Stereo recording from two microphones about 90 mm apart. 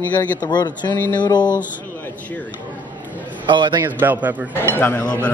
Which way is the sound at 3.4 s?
60° right (ahead or behind).